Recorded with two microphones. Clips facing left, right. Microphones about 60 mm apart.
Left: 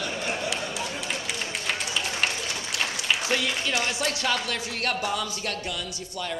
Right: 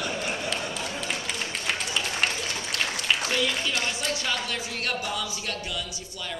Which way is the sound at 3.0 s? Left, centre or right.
Centre.